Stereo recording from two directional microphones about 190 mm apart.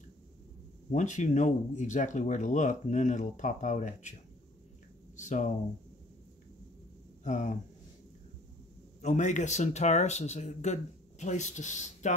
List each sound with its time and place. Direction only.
0.9 s speech: 40° left (ahead or behind)
5.1 s speech: 40° left (ahead or behind)
7.2 s speech: 40° left (ahead or behind)
9.0 s speech: 40° left (ahead or behind)